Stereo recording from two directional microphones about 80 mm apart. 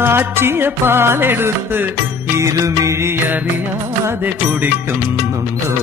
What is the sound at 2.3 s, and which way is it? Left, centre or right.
Music, right.